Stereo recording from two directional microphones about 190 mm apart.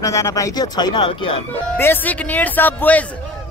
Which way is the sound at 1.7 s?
10° left (ahead or behind).